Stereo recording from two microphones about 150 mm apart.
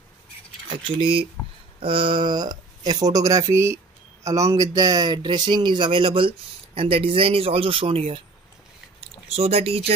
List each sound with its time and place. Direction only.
0.9 s speech: 35° right (ahead or behind)